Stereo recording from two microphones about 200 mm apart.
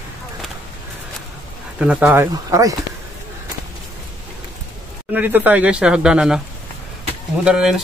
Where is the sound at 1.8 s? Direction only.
5° right (ahead or behind).